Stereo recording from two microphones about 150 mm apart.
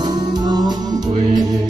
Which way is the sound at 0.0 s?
30° right (ahead or behind).